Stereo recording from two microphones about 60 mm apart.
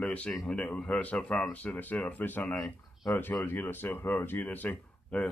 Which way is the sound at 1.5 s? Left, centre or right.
Left.